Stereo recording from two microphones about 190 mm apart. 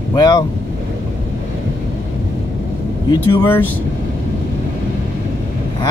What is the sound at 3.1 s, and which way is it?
Speech, 20° left (ahead or behind).